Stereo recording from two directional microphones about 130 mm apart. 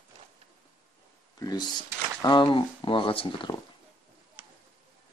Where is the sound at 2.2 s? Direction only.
35° left (ahead or behind).